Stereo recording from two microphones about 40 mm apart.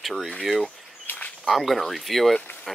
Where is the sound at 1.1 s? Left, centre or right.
Left.